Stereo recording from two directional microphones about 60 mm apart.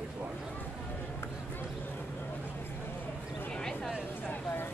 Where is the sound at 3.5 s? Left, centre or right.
Centre.